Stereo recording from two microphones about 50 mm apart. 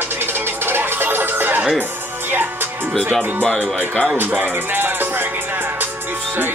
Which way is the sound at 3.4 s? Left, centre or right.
Centre.